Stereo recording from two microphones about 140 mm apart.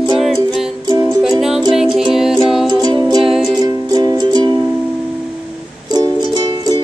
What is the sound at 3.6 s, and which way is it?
Music, 30° right (ahead or behind).